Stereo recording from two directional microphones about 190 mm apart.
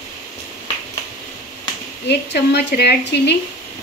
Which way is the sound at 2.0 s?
60° left (ahead or behind).